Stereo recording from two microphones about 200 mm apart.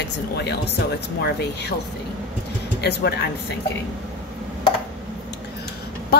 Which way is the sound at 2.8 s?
55° left (ahead or behind).